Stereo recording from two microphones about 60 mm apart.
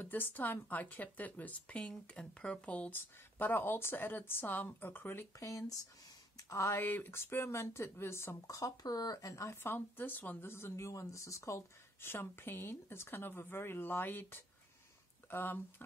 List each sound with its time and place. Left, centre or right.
0.0 s speech: left
2.9 s speech: left
5.4 s speech: left
6.3 s speech: left
8.5 s speech: left
9.6 s speech: left
10.9 s speech: left
12.0 s speech: left